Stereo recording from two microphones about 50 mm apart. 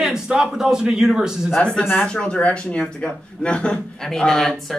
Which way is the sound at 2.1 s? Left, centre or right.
Left.